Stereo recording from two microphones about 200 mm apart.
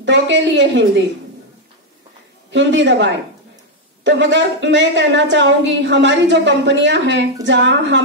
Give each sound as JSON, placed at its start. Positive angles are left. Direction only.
{"t": 0.0, "sound": "a woman's voice", "side_deg": -65}
{"t": 2.5, "sound": "a woman's voice", "side_deg": -65}